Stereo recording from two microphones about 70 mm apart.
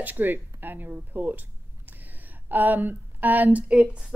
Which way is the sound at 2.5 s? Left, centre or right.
Right.